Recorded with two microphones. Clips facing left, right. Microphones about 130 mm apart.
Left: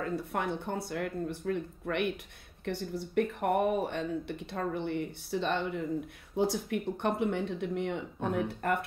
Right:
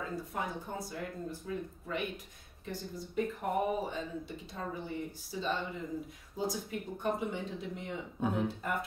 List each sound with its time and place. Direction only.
0.0 s speech: 65° left (ahead or behind)